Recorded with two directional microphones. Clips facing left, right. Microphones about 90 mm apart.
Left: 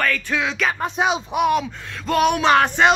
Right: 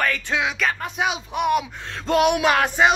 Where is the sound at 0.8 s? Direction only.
30° left (ahead or behind).